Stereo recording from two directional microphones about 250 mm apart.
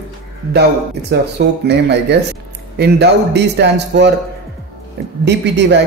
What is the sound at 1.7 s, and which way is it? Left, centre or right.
A man's voice, right.